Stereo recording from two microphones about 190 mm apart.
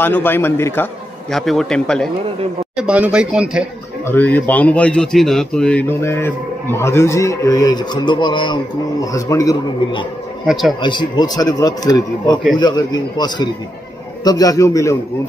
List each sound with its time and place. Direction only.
0.0 s a man's voice: 10° left (ahead or behind)
1.3 s speech: centre (ahead or behind)
4.1 s a man's voice: 10° left (ahead or behind)
10.4 s speech: centre (ahead or behind)
10.8 s a man's voice: 25° left (ahead or behind)